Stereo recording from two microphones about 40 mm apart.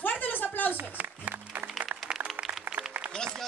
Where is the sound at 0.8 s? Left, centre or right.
Right.